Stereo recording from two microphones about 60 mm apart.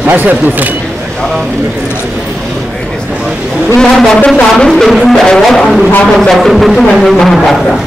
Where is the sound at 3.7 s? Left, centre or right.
Centre.